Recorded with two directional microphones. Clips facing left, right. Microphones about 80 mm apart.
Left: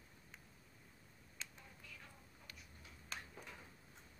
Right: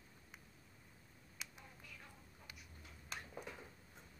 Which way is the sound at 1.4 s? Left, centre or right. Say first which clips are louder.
Even; centre.